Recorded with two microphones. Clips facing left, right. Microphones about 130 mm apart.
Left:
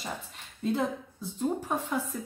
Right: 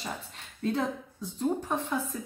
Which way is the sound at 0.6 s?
5° left (ahead or behind).